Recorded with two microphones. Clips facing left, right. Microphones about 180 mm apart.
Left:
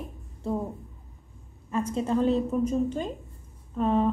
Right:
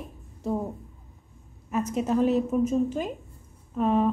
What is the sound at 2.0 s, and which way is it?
A woman's voice, 10° right (ahead or behind).